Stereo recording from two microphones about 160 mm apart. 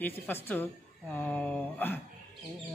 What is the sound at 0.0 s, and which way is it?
Speech, 10° left (ahead or behind).